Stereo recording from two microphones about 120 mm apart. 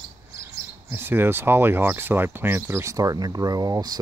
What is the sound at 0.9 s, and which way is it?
Speech, 20° right (ahead or behind).